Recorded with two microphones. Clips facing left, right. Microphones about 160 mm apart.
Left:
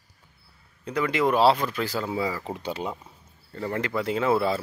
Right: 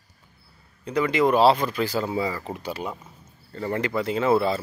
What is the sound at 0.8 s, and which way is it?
Speech, centre (ahead or behind).